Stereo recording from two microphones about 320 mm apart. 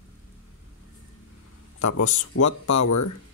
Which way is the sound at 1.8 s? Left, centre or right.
Left.